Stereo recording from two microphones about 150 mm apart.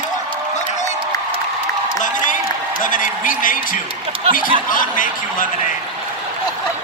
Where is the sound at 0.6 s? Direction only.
50° left (ahead or behind).